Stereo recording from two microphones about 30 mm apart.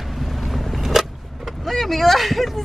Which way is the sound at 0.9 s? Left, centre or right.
Centre.